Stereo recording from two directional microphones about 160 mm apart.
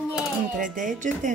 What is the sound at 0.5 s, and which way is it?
Speech, 55° right (ahead or behind).